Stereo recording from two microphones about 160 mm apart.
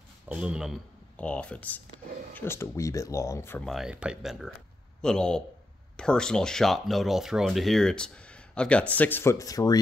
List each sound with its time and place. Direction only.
0.3 s speech: 5° right (ahead or behind)
1.1 s speech: 10° left (ahead or behind)
3.6 s speech: centre (ahead or behind); by 9.8 s 20° left (ahead or behind)